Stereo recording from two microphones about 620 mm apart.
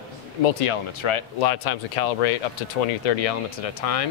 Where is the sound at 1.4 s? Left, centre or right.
Left.